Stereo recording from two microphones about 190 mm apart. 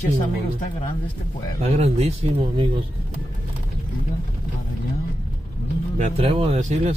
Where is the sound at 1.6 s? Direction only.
35° right (ahead or behind).